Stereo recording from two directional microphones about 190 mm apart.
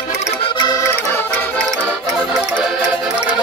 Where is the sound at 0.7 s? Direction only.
15° left (ahead or behind); by 3.2 s centre (ahead or behind).